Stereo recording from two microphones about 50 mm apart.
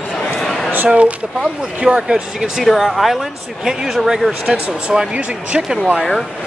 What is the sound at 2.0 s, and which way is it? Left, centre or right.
Speech, centre.